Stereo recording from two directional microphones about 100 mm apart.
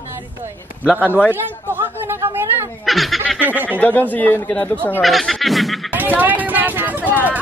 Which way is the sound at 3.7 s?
15° left (ahead or behind).